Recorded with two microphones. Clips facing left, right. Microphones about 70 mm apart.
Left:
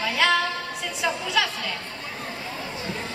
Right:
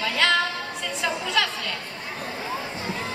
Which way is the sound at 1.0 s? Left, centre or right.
Centre.